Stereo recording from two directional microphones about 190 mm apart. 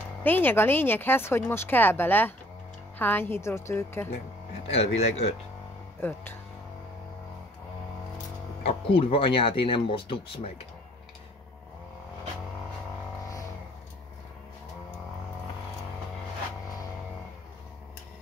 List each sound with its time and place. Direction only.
0.2 s speech: 10° left (ahead or behind)
4.7 s speech: 35° left (ahead or behind)
5.9 s speech: 10° left (ahead or behind)
8.6 s speech: 30° left (ahead or behind)